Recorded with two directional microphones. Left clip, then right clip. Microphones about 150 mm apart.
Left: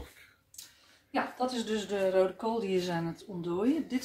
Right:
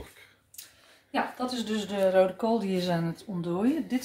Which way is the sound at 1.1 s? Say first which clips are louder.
Right 2 dB; 35° right (ahead or behind).